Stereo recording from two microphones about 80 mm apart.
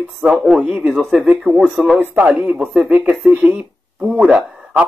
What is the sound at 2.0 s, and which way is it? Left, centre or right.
Speech, right.